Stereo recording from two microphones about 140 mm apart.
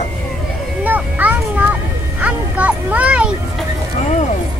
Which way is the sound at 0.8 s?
10° right (ahead or behind).